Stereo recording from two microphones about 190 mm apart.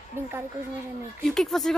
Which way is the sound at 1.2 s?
Centre (ahead or behind).